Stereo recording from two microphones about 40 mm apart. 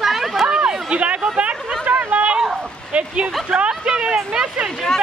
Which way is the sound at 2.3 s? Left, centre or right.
Right.